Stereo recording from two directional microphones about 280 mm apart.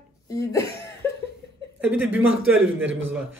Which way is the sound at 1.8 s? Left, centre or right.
Centre.